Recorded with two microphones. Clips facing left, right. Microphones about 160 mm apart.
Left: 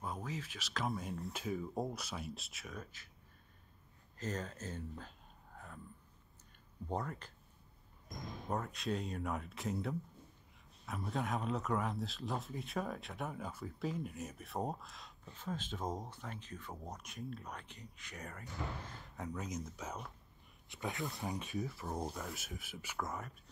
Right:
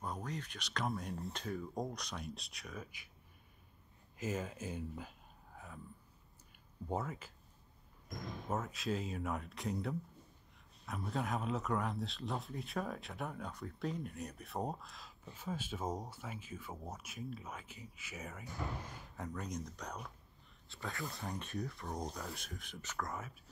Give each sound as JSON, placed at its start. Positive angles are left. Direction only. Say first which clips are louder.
{"t": 0.0, "sound": "speech", "louder": "even", "side_deg": 0}
{"t": 4.2, "sound": "a sound", "louder": "right 2 dB", "side_deg": -10}
{"t": 6.9, "sound": "speech", "louder": "right 1 dB", "side_deg": -5}
{"t": 20.6, "sound": "speech", "louder": "left 3 dB", "side_deg": 20}
{"t": 21.0, "sound": "speech", "louder": "left 2 dB", "side_deg": 0}